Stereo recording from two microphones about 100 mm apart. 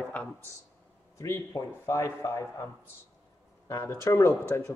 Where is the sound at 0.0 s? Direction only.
15° left (ahead or behind).